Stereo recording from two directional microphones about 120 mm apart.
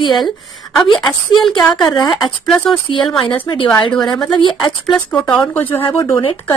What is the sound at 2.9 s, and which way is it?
A woman's voice, 45° left (ahead or behind).